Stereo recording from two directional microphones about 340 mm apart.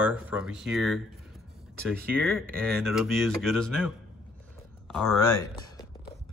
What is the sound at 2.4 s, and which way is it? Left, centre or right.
Speech, centre.